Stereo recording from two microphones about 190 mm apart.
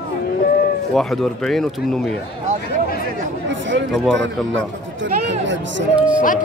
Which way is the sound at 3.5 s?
75° right (ahead or behind).